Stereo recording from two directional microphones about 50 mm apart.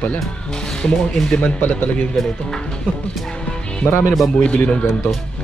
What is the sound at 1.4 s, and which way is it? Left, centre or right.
Speech, left.